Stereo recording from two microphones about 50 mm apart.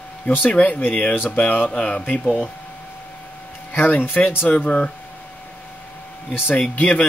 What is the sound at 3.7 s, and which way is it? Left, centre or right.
Speech, left.